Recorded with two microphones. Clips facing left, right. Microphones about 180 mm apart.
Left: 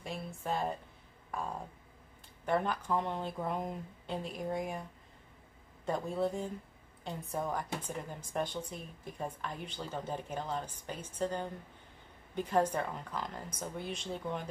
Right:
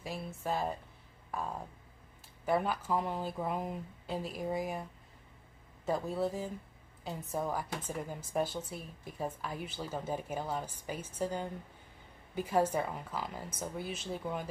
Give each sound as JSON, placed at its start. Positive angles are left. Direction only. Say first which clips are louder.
{"t": 0.0, "sound": "speech", "louder": "right 1 dB", "side_deg": 0}
{"t": 5.9, "sound": "speech", "louder": "even", "side_deg": -5}